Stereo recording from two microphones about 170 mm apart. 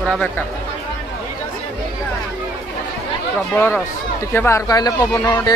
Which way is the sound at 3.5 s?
10° left (ahead or behind).